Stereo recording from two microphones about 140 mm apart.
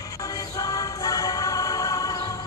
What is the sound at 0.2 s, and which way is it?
Music, 25° left (ahead or behind).